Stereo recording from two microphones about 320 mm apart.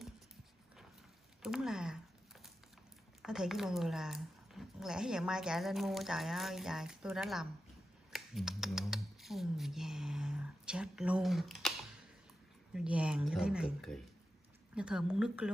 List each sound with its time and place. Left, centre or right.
1.4 s a sound: centre
3.2 s speech: centre
8.1 s computer keyboard: centre
12.7 s speech: centre